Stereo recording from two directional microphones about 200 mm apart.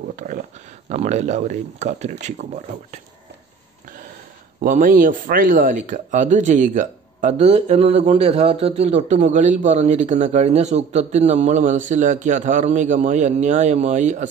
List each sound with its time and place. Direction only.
0.1 s a sound: 40° right (ahead or behind)
0.8 s speech: 35° right (ahead or behind)
4.6 s speech: 40° right (ahead or behind)